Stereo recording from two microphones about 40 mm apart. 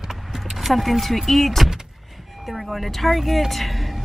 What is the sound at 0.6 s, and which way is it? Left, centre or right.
Speech, centre.